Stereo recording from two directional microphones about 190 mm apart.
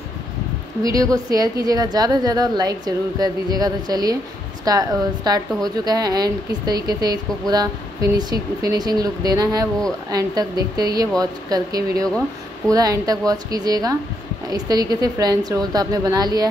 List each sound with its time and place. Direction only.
0.8 s speech: 20° right (ahead or behind)